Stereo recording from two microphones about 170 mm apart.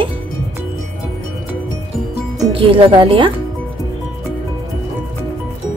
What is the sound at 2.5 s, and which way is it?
Speech, 30° right (ahead or behind).